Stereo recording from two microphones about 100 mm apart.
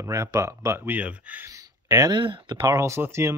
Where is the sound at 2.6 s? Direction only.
30° right (ahead or behind).